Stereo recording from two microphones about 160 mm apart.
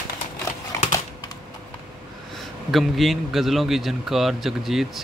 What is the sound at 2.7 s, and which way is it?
A man's voice, centre (ahead or behind).